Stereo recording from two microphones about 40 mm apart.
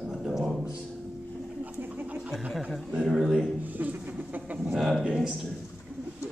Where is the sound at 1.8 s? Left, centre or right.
Right.